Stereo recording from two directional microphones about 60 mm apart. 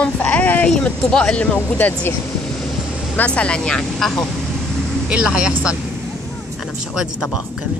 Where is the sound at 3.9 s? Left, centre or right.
Centre.